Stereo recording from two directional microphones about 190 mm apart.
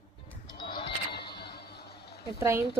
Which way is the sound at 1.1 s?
60° left (ahead or behind).